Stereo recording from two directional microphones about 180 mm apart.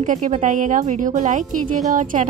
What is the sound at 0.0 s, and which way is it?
Speech, 45° right (ahead or behind).